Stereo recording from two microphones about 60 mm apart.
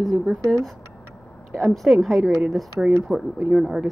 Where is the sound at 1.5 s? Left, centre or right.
Centre.